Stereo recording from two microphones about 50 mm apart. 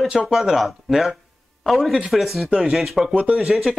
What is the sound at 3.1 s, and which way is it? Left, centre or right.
Speech, right.